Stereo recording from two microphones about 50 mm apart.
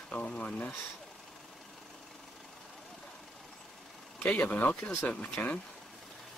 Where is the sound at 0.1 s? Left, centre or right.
Left.